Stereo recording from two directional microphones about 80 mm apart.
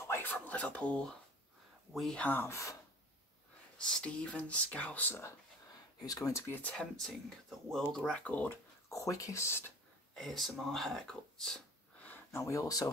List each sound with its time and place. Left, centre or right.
0.1 s a sound: left
2.1 s speech: left
3.7 s speech: centre
5.9 s speech: left
6.4 s speech: left
6.7 s speech: centre
8.8 s speech: left
10.1 s speech: centre
12.3 s speech: left